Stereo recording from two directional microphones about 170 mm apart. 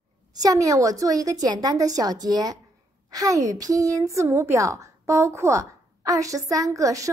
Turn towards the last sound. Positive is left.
turn(degrees=-20)  # may be behind; listen again after turning